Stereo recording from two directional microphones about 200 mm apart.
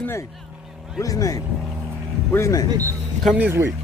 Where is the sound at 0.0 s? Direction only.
10° left (ahead or behind).